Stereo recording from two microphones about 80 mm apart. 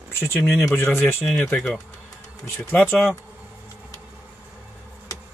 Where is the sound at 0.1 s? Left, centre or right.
Left.